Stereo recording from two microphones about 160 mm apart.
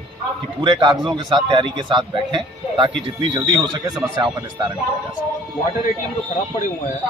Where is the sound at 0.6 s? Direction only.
30° right (ahead or behind).